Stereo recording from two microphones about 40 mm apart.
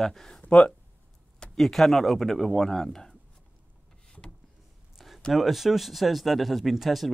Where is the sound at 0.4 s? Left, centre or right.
Left.